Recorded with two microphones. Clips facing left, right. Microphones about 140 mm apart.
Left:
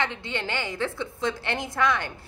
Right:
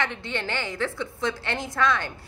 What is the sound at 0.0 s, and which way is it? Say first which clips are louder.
A woman's voice: even; 20° left (ahead or behind).